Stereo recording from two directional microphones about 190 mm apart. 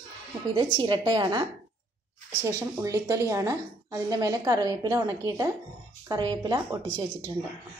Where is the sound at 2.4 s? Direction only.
15° right (ahead or behind).